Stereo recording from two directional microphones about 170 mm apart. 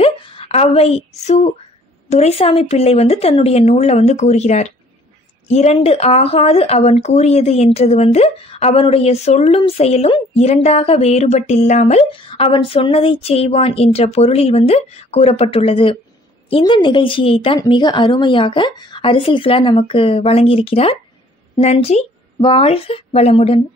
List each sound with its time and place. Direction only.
0.0 s a sound: 35° left (ahead or behind)
2.0 s speech: 40° left (ahead or behind)
12.1 s speech: 30° left (ahead or behind)